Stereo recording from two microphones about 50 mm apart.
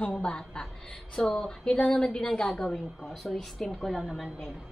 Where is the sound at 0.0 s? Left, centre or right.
Left.